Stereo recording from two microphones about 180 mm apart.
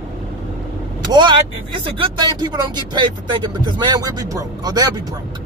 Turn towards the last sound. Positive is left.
turn(degrees=-20)  # may be behind; listen again after turning